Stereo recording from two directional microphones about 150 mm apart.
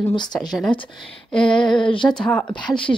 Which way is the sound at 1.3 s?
5° left (ahead or behind).